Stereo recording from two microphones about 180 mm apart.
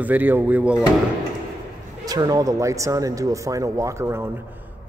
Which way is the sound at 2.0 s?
20° right (ahead or behind).